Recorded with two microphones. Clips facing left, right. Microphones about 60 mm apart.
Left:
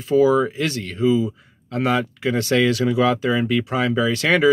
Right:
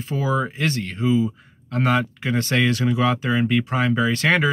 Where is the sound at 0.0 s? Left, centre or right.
Right.